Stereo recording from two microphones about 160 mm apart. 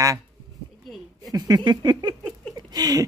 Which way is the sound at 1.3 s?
25° right (ahead or behind).